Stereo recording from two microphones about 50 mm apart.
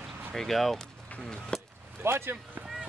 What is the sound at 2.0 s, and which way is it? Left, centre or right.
Speech, right.